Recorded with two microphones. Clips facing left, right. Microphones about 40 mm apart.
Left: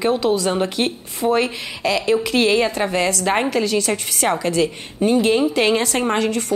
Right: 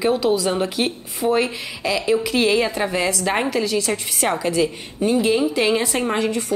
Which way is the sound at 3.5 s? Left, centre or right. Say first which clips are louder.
Left 2 dB; left.